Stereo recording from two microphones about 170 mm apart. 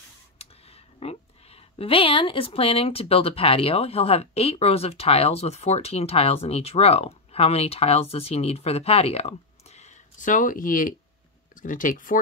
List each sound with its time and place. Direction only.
0.4 s speech: 35° left (ahead or behind); by 12.2 s 50° left (ahead or behind)